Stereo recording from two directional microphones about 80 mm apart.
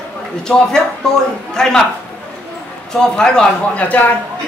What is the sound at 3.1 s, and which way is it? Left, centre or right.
Speech, centre.